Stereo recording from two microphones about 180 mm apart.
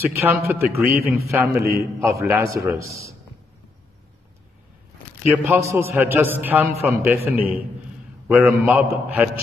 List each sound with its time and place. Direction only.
0.0 s a man's voice: 15° right (ahead or behind)
5.4 s a man's voice: 15° right (ahead or behind)